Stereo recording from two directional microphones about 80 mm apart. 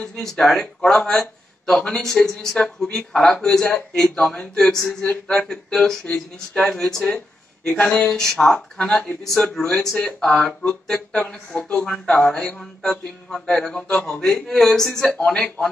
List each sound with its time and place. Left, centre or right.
0.0 s speech: centre